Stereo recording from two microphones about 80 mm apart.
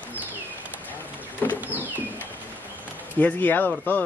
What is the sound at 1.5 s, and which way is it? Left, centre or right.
Bird, right.